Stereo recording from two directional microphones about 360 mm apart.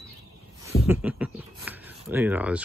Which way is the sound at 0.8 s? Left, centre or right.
Centre.